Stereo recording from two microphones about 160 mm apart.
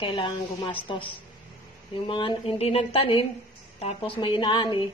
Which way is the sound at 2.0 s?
30° left (ahead or behind).